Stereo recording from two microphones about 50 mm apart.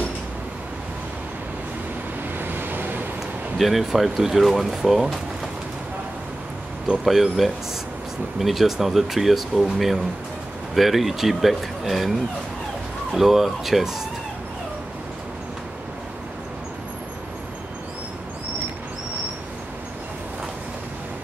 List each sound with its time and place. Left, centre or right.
2.3 s vehicle: right
3.5 s speech: centre
6.9 s speech: centre
13.1 s speech: centre